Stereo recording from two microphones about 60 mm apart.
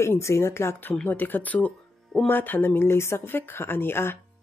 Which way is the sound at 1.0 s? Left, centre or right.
Left.